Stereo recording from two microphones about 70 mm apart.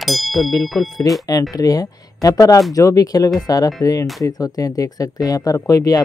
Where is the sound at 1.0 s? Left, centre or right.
Left.